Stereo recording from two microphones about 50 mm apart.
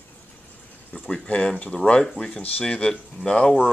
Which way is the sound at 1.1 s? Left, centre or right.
Centre.